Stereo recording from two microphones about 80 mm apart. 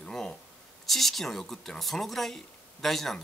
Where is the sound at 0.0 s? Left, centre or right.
Centre.